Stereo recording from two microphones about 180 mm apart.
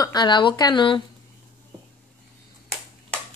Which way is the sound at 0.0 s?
25° left (ahead or behind).